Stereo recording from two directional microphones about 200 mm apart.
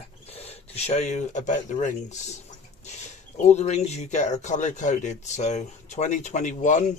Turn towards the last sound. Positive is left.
turn(degrees=35)  # may be behind; listen again after turning